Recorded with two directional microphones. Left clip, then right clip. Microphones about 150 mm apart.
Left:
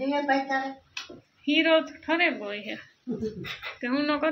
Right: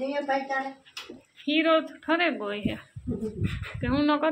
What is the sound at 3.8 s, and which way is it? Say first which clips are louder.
Speech: right 2 dB; 20° right (ahead or behind).